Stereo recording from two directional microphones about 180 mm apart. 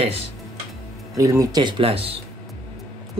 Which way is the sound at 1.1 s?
20° right (ahead or behind).